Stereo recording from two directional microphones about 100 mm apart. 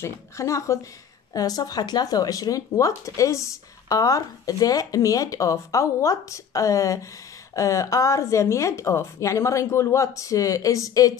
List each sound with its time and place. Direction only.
0.0 s speech: 30° left (ahead or behind)